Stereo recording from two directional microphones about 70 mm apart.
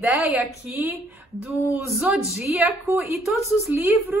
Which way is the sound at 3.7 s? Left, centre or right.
Right.